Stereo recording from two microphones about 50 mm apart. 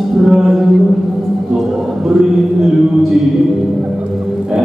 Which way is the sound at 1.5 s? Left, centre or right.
Centre.